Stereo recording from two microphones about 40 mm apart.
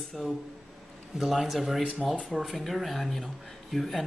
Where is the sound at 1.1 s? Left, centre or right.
Centre.